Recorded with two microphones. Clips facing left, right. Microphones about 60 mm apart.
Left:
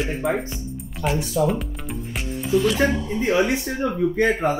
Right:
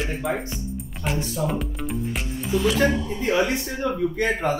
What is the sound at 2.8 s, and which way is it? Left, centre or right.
Speech, centre.